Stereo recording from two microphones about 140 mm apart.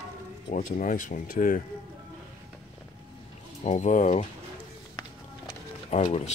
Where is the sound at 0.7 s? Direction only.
70° left (ahead or behind).